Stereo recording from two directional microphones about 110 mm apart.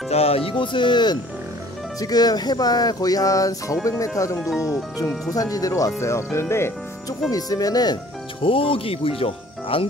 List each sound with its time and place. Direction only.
0.1 s speech: 65° left (ahead or behind); by 1.2 s 40° left (ahead or behind)
2.0 s music: 35° left (ahead or behind)
5.3 s music: 35° left (ahead or behind)
6.5 s speech: 25° left (ahead or behind)
7.2 s music: 35° left (ahead or behind)
8.4 s speech: 55° left (ahead or behind)